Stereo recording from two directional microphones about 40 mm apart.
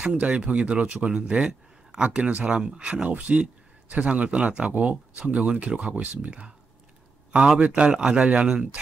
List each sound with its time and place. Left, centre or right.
0.0 s speech: right
3.1 s speech: right